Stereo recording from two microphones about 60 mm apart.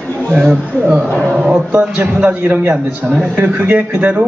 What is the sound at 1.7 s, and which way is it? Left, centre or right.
A man's voice, right.